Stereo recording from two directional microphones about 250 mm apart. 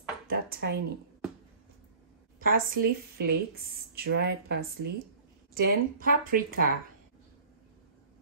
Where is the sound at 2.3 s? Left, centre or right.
Right.